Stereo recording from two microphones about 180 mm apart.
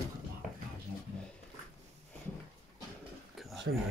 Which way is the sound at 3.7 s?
75° right (ahead or behind).